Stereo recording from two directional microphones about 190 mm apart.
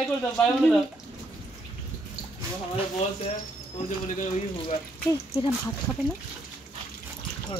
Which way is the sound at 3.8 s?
30° left (ahead or behind).